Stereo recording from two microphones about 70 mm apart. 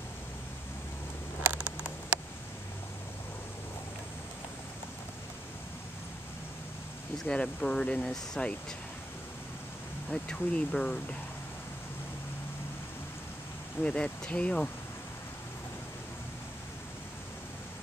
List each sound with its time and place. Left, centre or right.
1.4 s a sound: right
7.2 s speech: centre
10.0 s speech: centre
13.8 s speech: centre